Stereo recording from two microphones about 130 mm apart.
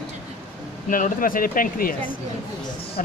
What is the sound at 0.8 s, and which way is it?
A man's voice, 90° left.